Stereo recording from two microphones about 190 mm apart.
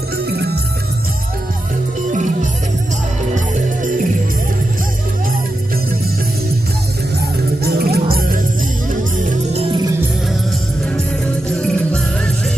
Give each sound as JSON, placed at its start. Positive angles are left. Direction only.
{"t": 3.3, "sound": "music", "side_deg": -40}
{"t": 7.6, "sound": "music", "side_deg": -55}
{"t": 9.2, "sound": "music", "side_deg": -35}
{"t": 11.4, "sound": "music", "side_deg": 5}